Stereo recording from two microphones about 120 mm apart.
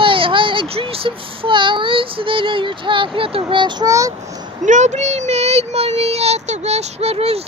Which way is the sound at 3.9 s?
30° right (ahead or behind).